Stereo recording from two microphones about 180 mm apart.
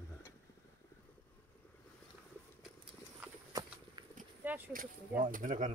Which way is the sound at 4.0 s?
25° right (ahead or behind).